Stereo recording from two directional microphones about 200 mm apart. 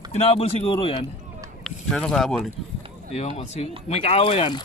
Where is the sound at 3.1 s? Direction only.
30° left (ahead or behind).